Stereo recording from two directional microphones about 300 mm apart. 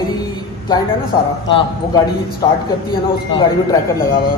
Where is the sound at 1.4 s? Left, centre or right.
Centre.